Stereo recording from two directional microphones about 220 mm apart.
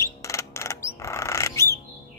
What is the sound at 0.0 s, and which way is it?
Music, 15° left (ahead or behind).